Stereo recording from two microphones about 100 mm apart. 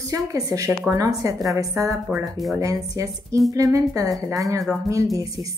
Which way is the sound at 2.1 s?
25° right (ahead or behind).